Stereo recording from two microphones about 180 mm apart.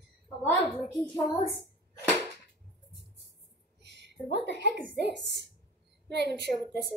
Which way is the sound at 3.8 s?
70° right (ahead or behind).